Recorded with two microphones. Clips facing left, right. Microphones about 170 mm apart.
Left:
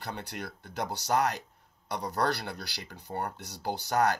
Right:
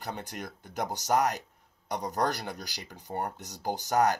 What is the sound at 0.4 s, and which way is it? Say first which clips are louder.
Speech: even; 15° right (ahead or behind).